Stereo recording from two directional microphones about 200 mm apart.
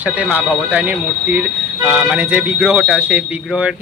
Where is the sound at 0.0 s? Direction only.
5° right (ahead or behind).